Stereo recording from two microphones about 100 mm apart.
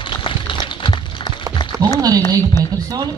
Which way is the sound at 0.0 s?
55° left (ahead or behind).